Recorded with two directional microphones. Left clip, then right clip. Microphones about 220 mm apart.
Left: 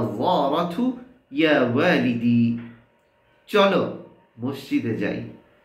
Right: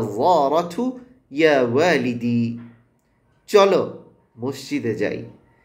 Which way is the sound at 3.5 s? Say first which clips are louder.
Right 4 dB; 20° right (ahead or behind).